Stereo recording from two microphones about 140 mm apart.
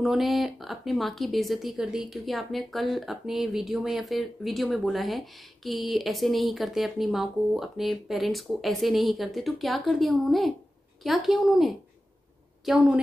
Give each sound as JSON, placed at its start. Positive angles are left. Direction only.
{"t": 0.0, "sound": "speech", "side_deg": 0}